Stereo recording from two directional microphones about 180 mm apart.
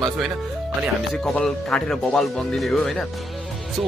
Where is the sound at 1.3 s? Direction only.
5° left (ahead or behind).